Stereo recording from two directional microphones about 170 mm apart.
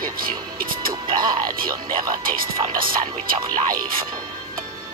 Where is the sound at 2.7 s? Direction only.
55° right (ahead or behind).